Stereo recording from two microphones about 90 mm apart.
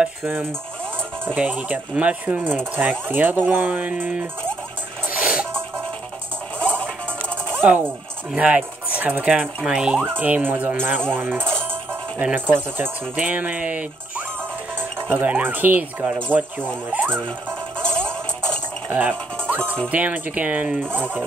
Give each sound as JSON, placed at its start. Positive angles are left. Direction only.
{"t": 0.2, "sound": "speech", "side_deg": -25}
{"t": 5.1, "sound": "music", "side_deg": -15}
{"t": 6.6, "sound": "music", "side_deg": 15}
{"t": 7.4, "sound": "music", "side_deg": -20}
{"t": 8.4, "sound": "speech", "side_deg": -15}
{"t": 17.7, "sound": "music", "side_deg": 10}
{"t": 19.9, "sound": "speech", "side_deg": -15}